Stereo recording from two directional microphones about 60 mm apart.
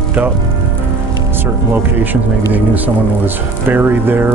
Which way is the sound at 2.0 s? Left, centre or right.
Right.